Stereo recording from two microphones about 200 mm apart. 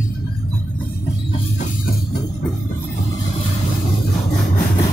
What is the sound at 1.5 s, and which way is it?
Music, 45° left (ahead or behind).